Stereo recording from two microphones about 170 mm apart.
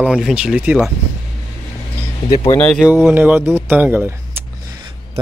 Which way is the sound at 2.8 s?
5° right (ahead or behind).